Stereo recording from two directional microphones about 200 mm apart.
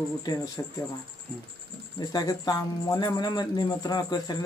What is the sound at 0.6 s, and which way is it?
Speech, 15° left (ahead or behind).